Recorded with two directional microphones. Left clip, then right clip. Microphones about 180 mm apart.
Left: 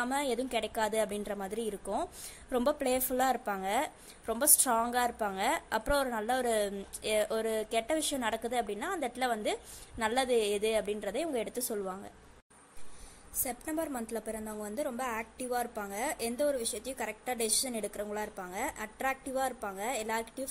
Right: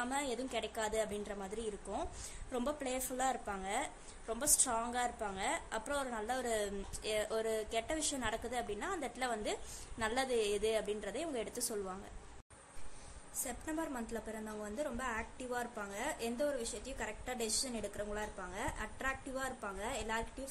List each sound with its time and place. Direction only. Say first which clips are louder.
0.0 s speech: left 6 dB; 25° left (ahead or behind)
13.4 s speech: left 5 dB; 30° left (ahead or behind)